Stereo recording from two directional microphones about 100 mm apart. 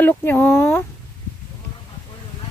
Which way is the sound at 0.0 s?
20° left (ahead or behind).